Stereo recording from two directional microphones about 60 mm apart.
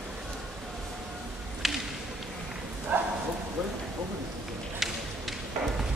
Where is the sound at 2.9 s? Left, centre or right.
Right.